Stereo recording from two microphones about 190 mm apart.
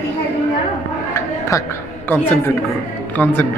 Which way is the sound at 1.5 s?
15° left (ahead or behind).